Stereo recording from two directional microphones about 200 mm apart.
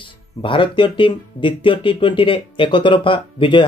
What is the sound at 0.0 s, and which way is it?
Speech, 25° left (ahead or behind).